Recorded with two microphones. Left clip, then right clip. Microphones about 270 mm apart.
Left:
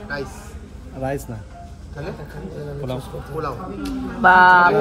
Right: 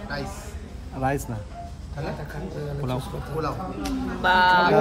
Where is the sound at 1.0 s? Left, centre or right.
Centre.